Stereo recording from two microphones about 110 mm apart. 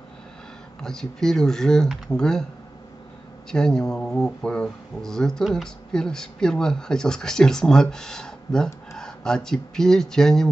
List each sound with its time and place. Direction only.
0.8 s speech: 5° left (ahead or behind)
3.5 s speech: 5° left (ahead or behind)